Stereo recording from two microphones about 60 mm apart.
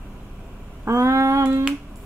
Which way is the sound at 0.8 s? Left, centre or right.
Right.